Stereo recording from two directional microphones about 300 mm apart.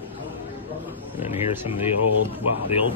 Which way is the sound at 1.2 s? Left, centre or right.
Centre.